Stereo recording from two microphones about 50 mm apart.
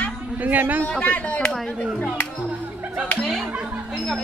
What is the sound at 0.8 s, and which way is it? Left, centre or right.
Speech, left.